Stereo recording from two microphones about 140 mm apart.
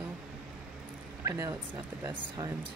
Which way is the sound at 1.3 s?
20° right (ahead or behind).